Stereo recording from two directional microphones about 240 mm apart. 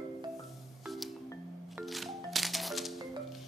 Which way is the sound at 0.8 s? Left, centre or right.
Centre.